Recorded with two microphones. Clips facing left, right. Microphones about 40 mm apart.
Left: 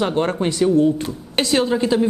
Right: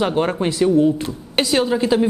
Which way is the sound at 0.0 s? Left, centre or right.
Centre.